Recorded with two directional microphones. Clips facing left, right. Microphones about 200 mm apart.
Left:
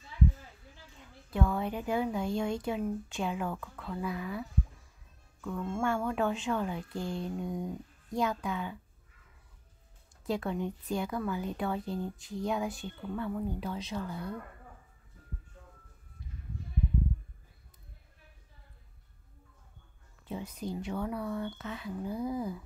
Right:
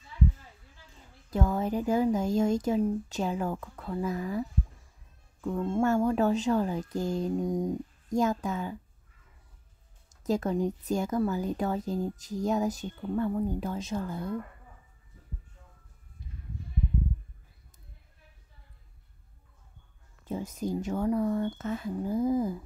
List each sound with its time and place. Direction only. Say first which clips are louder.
1.3 s speech: right 3 dB; 40° right (ahead or behind)
10.2 s speech: right 5 dB; 40° right (ahead or behind)
20.2 s speech: right 5 dB; 45° right (ahead or behind)